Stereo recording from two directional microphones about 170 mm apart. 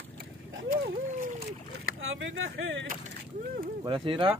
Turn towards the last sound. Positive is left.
turn(degrees=-30)  # may be behind; listen again after turning